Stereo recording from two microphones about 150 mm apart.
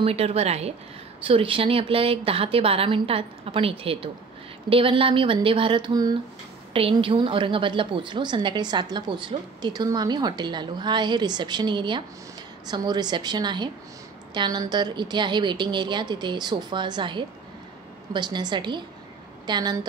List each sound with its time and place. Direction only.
0.0 s a woman's voice: 40° right (ahead or behind)